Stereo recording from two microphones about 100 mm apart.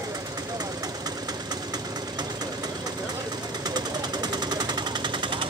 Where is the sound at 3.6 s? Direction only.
45° right (ahead or behind).